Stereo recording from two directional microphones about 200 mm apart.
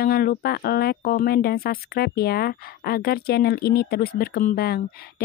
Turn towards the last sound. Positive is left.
turn(degrees=50)  # may be behind; listen again after turning